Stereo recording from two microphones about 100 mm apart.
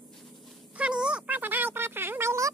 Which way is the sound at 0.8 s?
10° right (ahead or behind).